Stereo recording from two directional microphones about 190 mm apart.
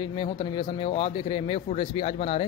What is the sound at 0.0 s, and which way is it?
Speech, 25° left (ahead or behind).